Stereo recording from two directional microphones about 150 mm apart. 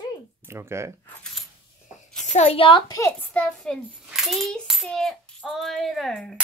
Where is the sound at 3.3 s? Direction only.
5° left (ahead or behind).